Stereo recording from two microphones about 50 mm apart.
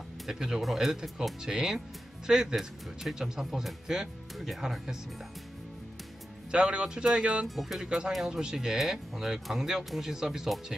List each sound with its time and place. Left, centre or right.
0.3 s speech: centre
6.5 s speech: centre
7.4 s speech: centre
8.3 s speech: centre